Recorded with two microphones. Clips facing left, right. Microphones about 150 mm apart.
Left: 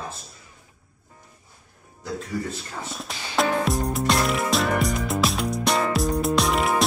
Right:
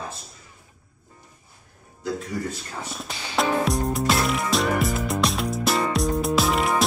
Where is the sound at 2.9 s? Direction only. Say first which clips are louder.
Even; centre (ahead or behind).